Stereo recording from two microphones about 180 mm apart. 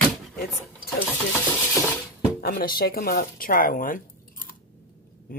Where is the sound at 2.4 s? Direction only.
55° left (ahead or behind).